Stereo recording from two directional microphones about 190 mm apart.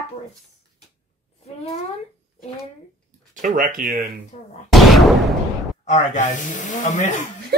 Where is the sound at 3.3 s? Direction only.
45° right (ahead or behind).